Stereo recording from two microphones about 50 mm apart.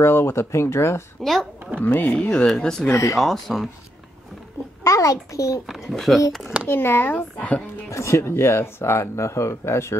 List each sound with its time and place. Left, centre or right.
0.0 s speech: left
1.2 s speech: centre
1.8 s speech: left
2.4 s speech: centre
2.9 s a child's voice: left
3.2 s speech: centre
4.8 s a child's voice: left
5.9 s speech: centre
6.7 s speech: left
7.9 s speech: left
8.2 s speech: left